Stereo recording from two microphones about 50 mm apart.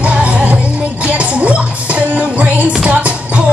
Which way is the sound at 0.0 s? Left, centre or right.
Right.